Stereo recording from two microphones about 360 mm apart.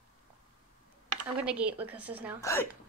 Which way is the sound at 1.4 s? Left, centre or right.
Centre.